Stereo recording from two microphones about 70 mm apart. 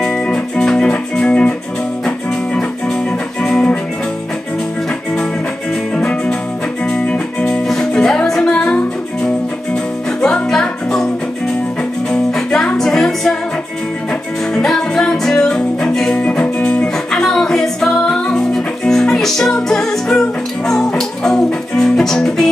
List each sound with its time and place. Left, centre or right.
0.0 s music: centre
3.4 s music: centre
5.9 s music: centre
12.1 s music: centre
14.5 s music: centre
17.1 s music: centre